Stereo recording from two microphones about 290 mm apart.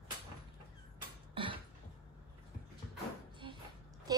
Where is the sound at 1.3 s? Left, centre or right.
Centre.